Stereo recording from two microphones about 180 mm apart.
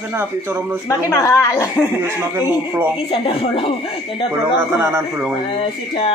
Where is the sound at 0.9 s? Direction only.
15° left (ahead or behind).